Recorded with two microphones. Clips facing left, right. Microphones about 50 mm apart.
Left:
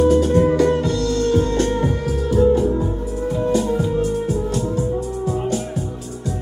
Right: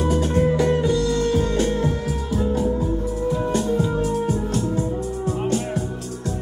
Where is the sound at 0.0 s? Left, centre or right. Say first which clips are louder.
Left 5 dB; centre.